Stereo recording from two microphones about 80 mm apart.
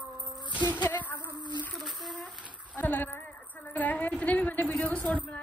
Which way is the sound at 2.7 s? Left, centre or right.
Left.